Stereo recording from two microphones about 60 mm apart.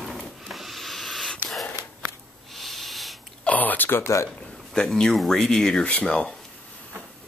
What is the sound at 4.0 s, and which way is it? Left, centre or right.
Speech, left.